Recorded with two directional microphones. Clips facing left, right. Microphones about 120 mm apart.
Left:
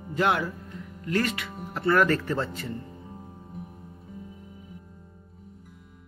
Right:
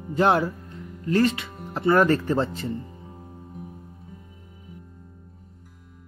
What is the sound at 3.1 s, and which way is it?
Music, centre (ahead or behind).